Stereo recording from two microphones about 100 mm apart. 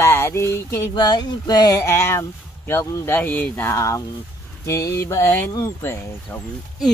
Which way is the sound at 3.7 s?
30° left (ahead or behind).